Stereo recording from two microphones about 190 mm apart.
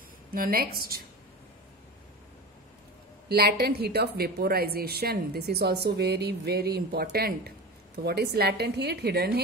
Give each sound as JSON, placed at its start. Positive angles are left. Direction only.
{"t": 0.3, "sound": "a woman's voice", "side_deg": -50}
{"t": 3.3, "sound": "a woman's voice", "side_deg": -55}